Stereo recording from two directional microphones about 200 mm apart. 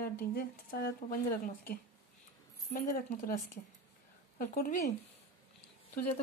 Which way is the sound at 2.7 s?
40° left (ahead or behind).